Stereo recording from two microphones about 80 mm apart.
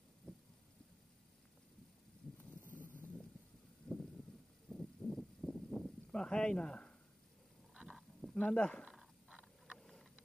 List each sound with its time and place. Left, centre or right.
0.3 s heart sounds: centre
2.6 s vehicle: left
3.9 s a sound: centre
7.7 s a sound: centre
8.2 s speech: centre
8.8 s dog: centre
9.8 s vehicle: centre